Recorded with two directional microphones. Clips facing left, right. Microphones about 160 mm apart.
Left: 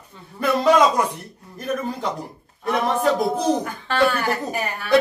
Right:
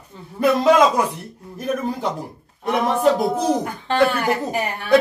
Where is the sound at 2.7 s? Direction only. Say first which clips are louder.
Right 2 dB; 10° right (ahead or behind).